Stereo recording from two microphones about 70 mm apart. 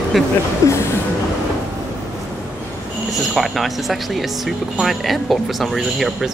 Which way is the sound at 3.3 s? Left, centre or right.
Centre.